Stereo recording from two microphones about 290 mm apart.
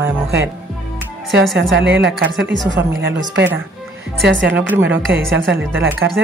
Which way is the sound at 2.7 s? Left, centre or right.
Right.